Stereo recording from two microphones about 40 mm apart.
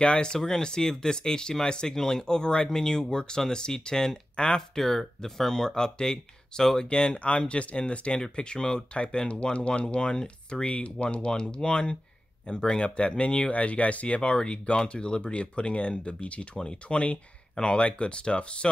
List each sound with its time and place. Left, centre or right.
0.0 s speech: left
11.1 s speech: centre